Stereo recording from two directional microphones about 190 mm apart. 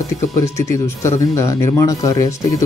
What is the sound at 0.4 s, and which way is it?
Speech, 15° left (ahead or behind).